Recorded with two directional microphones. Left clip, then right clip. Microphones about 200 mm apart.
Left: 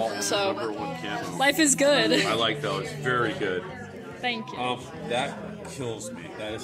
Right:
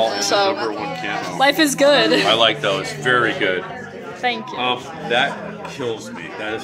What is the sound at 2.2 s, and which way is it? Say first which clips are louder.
Speech: right 10 dB; 55° right (ahead or behind).